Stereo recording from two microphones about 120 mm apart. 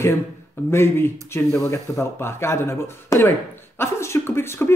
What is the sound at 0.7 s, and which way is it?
Speech, 20° left (ahead or behind).